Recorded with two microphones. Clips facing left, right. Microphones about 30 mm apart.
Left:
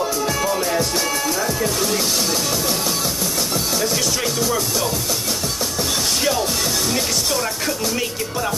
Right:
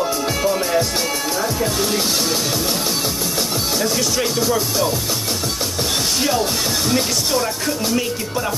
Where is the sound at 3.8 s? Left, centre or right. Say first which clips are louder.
Right 2 dB; centre.